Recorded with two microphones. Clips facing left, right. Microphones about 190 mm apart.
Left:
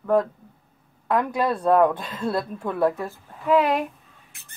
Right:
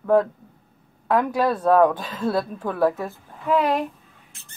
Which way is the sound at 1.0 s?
Centre (ahead or behind).